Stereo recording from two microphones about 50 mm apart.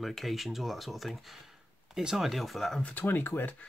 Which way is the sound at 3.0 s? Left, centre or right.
Left.